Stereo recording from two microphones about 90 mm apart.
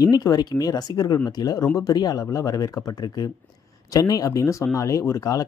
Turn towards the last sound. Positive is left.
turn(degrees=40)  # may be behind; listen again after turning